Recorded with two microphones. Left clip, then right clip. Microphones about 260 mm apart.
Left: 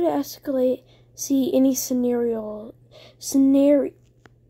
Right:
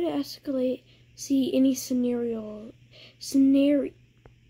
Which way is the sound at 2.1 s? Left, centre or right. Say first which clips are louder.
Left 6 dB; centre.